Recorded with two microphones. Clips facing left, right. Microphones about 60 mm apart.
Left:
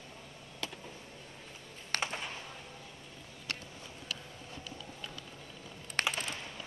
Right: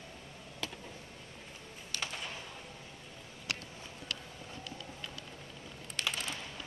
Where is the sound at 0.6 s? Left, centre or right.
Centre.